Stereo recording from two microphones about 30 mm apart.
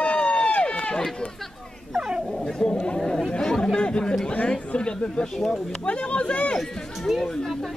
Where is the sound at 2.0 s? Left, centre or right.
Right.